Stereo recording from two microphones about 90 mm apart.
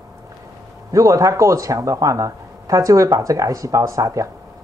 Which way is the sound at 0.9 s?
35° right (ahead or behind).